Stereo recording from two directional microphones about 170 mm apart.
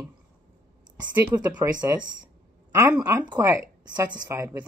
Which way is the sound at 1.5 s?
20° right (ahead or behind).